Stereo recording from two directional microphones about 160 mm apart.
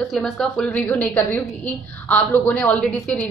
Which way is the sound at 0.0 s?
Centre (ahead or behind).